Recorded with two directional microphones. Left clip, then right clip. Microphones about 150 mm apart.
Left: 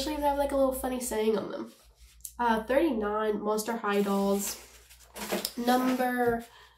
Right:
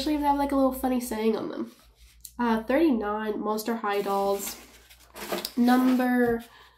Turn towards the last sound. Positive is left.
turn(degrees=-25)  # may be behind; listen again after turning